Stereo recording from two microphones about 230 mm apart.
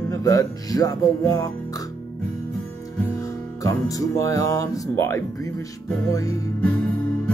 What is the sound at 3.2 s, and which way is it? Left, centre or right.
Music, centre.